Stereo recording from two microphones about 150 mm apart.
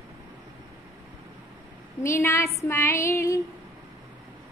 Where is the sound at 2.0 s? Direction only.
20° left (ahead or behind).